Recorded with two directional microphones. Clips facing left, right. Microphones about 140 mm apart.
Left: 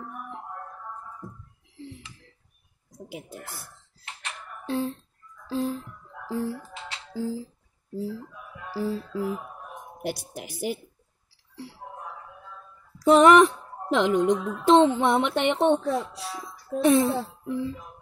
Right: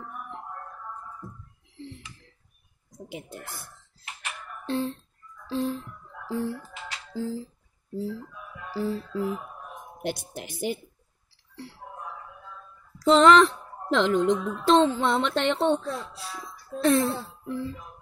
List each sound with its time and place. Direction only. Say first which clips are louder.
3.1 s speech: even; 5° left (ahead or behind)
4.6 s speech: even; 5° left (ahead or behind)
6.7 s music: even; 25° left (ahead or behind)
7.2 s speech: left 1 dB; 10° left (ahead or behind)
8.6 s music: even; 10° left (ahead or behind)
10.0 s speech: even; 10° left (ahead or behind)
13.0 s speech: left 2 dB; 15° left (ahead or behind)